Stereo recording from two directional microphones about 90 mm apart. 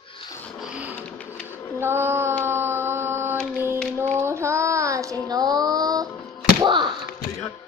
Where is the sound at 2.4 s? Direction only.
25° right (ahead or behind).